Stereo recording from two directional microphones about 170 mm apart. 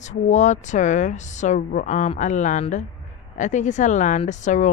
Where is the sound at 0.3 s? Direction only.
45° left (ahead or behind).